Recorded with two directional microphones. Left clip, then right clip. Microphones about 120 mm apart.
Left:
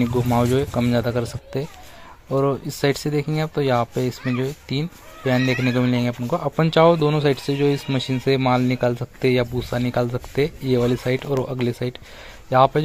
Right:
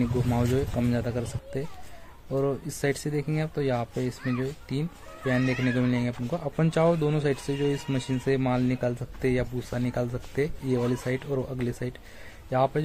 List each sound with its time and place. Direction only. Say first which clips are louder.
0.0 s speech: left 8 dB; 20° left (ahead or behind)